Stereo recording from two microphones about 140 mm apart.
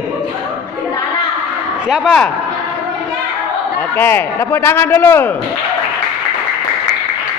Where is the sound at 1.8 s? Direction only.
5° right (ahead or behind).